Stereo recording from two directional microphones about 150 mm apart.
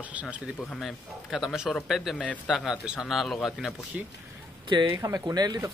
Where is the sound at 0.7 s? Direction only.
Centre (ahead or behind).